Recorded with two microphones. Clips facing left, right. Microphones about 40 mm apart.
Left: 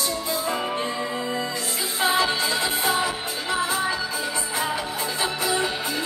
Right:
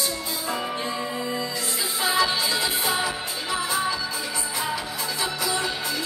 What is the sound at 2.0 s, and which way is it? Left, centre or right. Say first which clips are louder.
Music: left 1 dB; left.